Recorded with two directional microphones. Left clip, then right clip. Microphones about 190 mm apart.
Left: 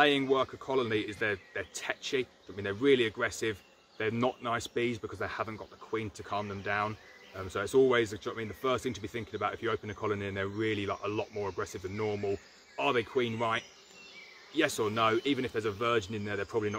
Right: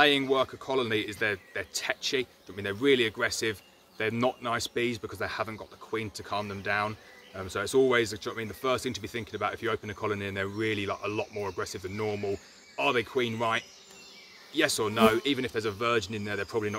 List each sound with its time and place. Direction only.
0.0 s speech: 25° right (ahead or behind)